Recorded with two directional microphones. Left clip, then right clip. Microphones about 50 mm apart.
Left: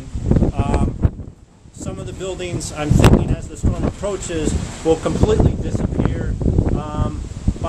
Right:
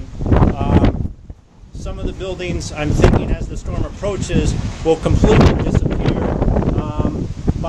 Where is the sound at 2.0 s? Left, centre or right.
Right.